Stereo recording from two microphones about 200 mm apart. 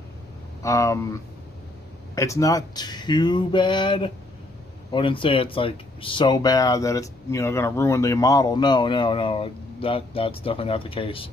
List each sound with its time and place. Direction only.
0.6 s speech: 15° left (ahead or behind)
2.1 s speech: 15° left (ahead or behind)